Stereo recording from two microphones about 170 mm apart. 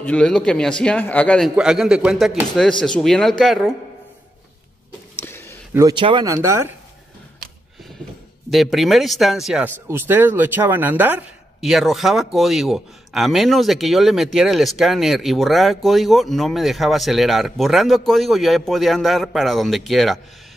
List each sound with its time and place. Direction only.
0.0 s speech: 5° left (ahead or behind)
1.5 s speech: 5° right (ahead or behind)
5.2 s a sound: 15° left (ahead or behind)
5.7 s a man's voice: 15° right (ahead or behind)
5.9 s speech: 30° right (ahead or behind)
6.2 s speech: 20° right (ahead or behind)
8.5 s speech: centre (ahead or behind)
11.6 s speech: centre (ahead or behind)